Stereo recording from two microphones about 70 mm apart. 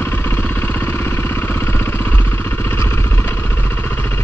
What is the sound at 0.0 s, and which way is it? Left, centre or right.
Vehicle, left.